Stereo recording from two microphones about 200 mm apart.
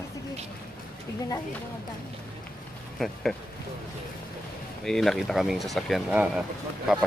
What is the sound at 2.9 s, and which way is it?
Speech, centre (ahead or behind).